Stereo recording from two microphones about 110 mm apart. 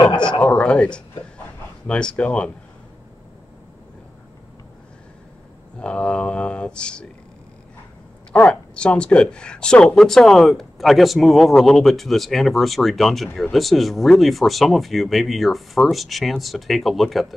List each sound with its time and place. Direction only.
0.2 s speech: 10° left (ahead or behind)
5.8 s speech: 10° left (ahead or behind)
8.3 s speech: 10° left (ahead or behind)